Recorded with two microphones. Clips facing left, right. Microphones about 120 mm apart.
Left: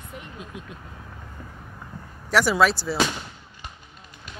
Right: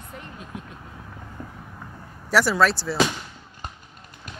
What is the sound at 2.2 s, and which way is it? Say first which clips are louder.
Speech: even; centre (ahead or behind).